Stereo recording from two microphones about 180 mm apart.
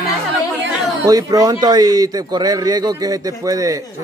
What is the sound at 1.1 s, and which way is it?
Speech, 20° right (ahead or behind).